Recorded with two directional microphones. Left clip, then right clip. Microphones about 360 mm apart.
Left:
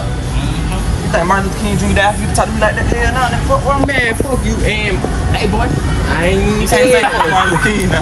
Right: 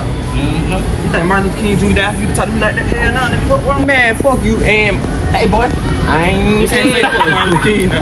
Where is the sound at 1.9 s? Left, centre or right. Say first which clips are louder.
Left 2 dB; left.